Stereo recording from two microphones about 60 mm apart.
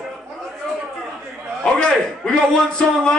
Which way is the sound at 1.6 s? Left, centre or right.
Centre.